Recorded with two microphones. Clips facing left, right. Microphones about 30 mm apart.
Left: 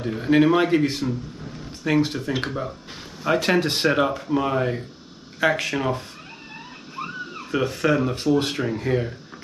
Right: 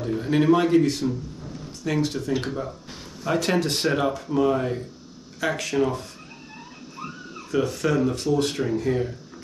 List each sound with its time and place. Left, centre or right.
0.0 s speech: left